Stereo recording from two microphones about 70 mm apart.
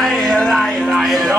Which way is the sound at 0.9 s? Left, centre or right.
Centre.